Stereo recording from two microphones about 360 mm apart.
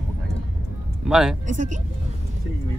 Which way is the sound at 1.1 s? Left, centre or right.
Centre.